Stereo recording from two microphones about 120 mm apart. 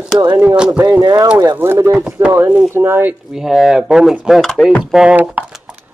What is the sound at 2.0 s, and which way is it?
Speech, 10° right (ahead or behind).